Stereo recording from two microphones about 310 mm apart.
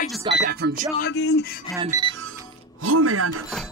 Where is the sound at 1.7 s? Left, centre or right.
Centre.